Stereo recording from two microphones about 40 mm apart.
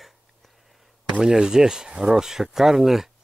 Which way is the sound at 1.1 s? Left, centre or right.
Centre.